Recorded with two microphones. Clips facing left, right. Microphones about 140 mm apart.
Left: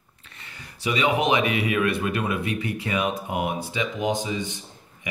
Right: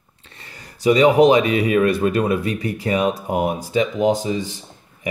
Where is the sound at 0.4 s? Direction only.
40° right (ahead or behind).